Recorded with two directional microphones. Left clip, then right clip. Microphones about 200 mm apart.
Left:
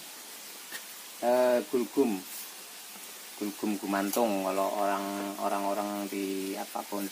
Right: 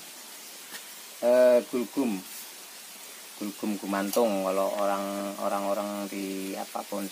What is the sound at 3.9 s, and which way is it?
Speech, 35° right (ahead or behind).